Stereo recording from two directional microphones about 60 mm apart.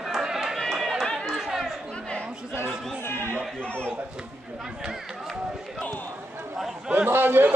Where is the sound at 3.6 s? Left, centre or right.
Centre.